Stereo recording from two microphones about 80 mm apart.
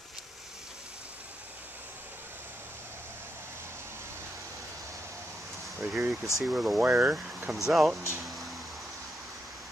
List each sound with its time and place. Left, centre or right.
5.8 s speech: centre
7.5 s speech: centre
8.2 s a sound: centre